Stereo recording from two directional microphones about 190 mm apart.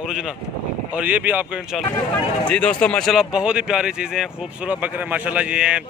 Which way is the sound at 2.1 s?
5° left (ahead or behind).